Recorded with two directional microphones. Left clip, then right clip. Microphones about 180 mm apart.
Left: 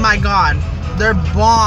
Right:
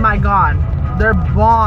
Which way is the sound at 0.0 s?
25° left (ahead or behind).